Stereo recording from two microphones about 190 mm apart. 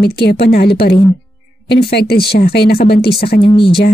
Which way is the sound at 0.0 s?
60° left (ahead or behind).